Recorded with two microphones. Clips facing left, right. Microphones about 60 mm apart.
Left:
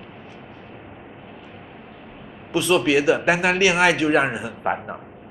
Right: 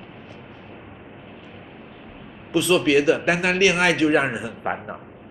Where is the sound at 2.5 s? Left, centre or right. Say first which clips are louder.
Right 1 dB; centre.